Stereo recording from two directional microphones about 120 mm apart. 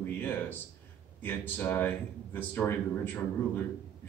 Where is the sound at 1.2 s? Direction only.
15° left (ahead or behind).